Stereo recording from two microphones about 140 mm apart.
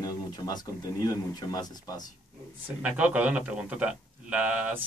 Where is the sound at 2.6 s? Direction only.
10° right (ahead or behind).